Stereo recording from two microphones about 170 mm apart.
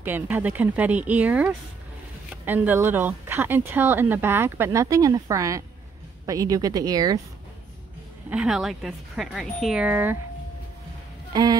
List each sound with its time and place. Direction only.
0.0 s a woman's voice: 10° right (ahead or behind)
8.3 s speech: 5° right (ahead or behind)